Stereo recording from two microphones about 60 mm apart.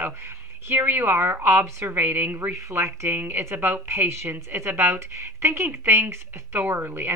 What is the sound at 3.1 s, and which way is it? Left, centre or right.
A woman's voice, right.